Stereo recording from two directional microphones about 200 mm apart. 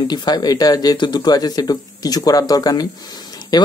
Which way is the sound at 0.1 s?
20° left (ahead or behind).